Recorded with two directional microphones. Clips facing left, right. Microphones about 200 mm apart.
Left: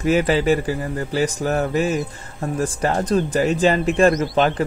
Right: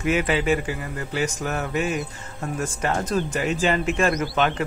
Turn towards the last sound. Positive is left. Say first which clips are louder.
# left 6 dB
turn(degrees=35)  # may be behind; listen again after turning